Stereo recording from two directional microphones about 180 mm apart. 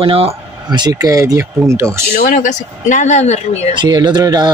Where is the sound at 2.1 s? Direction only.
45° left (ahead or behind).